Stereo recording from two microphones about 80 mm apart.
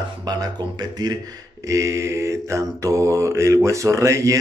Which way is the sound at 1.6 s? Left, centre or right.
Right.